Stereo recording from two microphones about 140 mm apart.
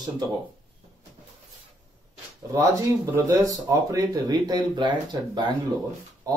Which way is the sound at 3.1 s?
15° right (ahead or behind).